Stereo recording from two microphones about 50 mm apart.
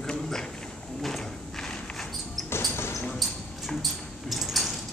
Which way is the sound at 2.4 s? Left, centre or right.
Left.